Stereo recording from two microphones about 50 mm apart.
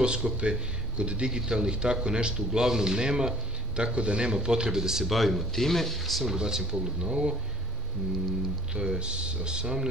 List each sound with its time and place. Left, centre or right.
0.0 s speech: centre
6.3 s speech: centre
8.7 s speech: centre